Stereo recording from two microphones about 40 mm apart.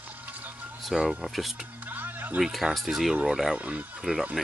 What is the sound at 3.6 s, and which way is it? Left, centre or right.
Speech, right.